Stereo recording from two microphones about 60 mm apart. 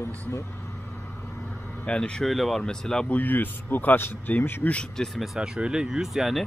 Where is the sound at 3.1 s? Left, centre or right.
Left.